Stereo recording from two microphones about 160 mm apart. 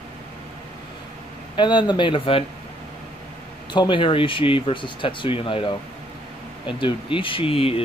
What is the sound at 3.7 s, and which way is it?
Speech, 30° left (ahead or behind).